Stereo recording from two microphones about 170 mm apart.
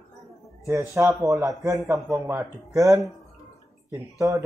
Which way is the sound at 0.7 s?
15° right (ahead or behind).